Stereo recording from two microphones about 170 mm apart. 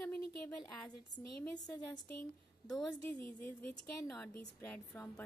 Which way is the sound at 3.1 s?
10° left (ahead or behind).